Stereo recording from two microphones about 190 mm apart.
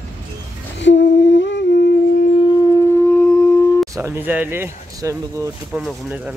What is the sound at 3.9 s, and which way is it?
Speech, 15° right (ahead or behind).